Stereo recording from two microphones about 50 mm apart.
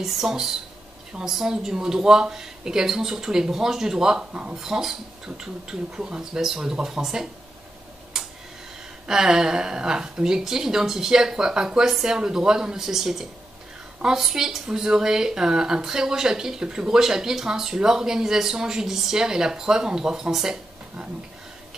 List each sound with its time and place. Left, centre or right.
0.0 s speech: centre; by 4.6 s right
4.6 s speech: centre
8.2 s tick-tock: centre
9.0 s speech: centre